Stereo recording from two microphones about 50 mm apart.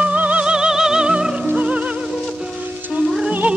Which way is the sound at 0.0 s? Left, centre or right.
Right.